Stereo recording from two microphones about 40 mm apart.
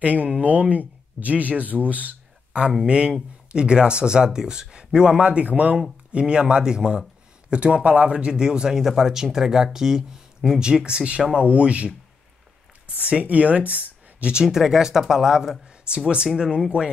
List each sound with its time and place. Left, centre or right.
0.0 s speech: right
2.9 s speech: right
6.1 s speech: right
13.2 s speech: right
14.3 s speech: centre